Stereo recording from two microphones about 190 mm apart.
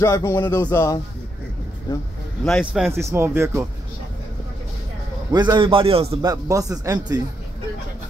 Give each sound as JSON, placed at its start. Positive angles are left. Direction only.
{"t": 0.0, "sound": "speech", "side_deg": 15}
{"t": 2.4, "sound": "speech", "side_deg": 0}
{"t": 2.9, "sound": "speech", "side_deg": -15}
{"t": 5.3, "sound": "a man's voice", "side_deg": -25}
{"t": 6.2, "sound": "speech", "side_deg": -15}